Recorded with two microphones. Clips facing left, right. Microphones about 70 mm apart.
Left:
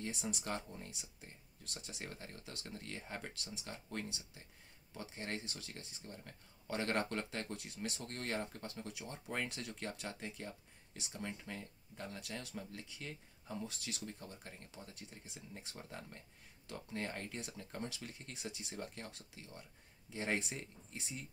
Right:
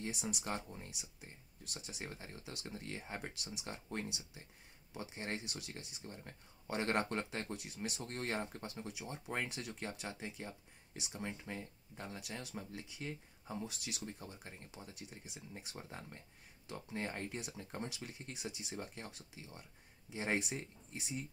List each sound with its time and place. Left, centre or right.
0.0 s speech: centre
7.5 s speech: centre
8.0 s speech: right
8.8 s speech: centre
12.3 s speech: centre